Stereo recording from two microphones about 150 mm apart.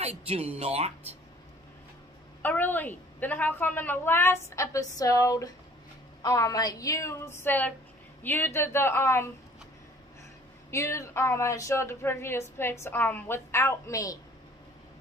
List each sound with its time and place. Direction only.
0.0 s speech: 45° right (ahead or behind)
2.4 s a woman's voice: 10° left (ahead or behind)
10.7 s a woman's voice: 20° left (ahead or behind)